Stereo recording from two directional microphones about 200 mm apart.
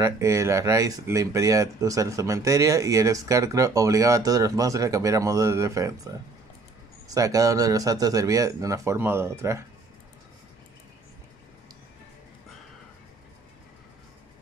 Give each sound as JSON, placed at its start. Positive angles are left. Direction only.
{"t": 0.0, "sound": "speech", "side_deg": -15}
{"t": 7.1, "sound": "speech", "side_deg": -15}